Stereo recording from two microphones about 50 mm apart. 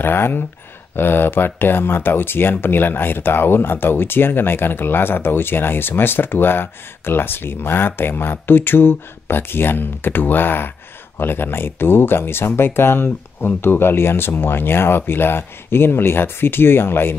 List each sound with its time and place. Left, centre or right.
0.0 s speech: left